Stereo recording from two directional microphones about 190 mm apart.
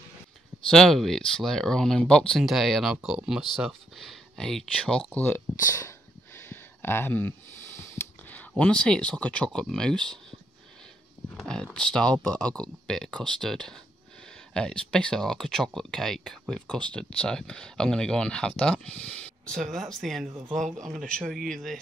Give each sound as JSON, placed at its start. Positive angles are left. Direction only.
{"t": 0.7, "sound": "speech", "side_deg": 5}
{"t": 11.3, "sound": "speech", "side_deg": 0}